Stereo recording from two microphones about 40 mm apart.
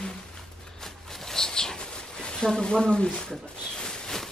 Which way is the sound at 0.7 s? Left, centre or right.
Centre.